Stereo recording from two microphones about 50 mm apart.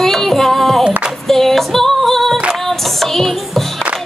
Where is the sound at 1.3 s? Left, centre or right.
Centre.